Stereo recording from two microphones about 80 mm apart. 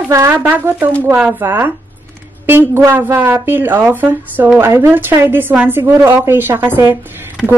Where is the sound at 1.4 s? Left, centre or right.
Right.